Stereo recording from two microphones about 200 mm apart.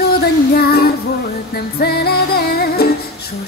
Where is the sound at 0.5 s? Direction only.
50° left (ahead or behind).